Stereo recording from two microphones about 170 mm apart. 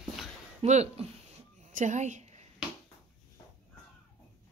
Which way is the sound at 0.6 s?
40° right (ahead or behind).